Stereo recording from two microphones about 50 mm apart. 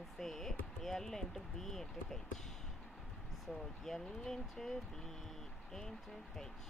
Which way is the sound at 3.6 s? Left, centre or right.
Centre.